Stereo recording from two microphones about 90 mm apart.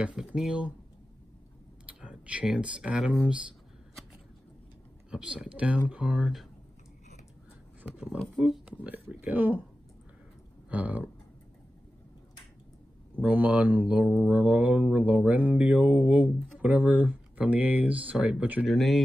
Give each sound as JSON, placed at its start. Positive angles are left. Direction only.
{"t": 0.0, "sound": "speech", "side_deg": -10}
{"t": 1.9, "sound": "speech", "side_deg": -10}
{"t": 5.1, "sound": "speech", "side_deg": -10}
{"t": 7.8, "sound": "speech", "side_deg": -15}
{"t": 10.7, "sound": "speech", "side_deg": -15}
{"t": 13.2, "sound": "speech", "side_deg": -15}
{"t": 18.7, "sound": "speech", "side_deg": 0}